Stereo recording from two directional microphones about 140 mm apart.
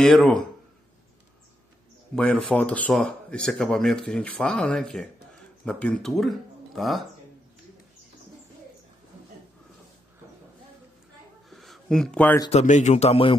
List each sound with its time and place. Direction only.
0.0 s speech: 5° left (ahead or behind)
2.1 s speech: 5° left (ahead or behind)
11.5 s a sound: centre (ahead or behind)
12.4 s a man's voice: 55° left (ahead or behind)